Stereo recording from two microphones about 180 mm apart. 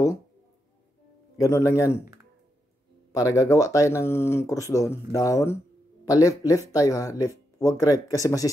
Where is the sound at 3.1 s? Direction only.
20° left (ahead or behind).